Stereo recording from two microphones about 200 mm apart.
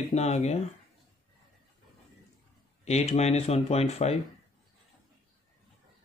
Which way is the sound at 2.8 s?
30° left (ahead or behind).